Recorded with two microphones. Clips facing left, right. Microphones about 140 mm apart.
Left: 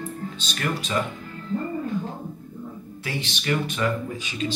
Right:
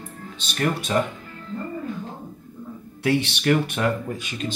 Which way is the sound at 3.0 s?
65° right (ahead or behind).